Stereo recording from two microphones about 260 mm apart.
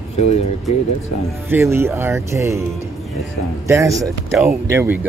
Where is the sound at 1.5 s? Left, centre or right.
Centre.